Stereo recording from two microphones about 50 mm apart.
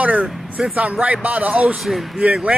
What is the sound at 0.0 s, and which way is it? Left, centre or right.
Speech, right.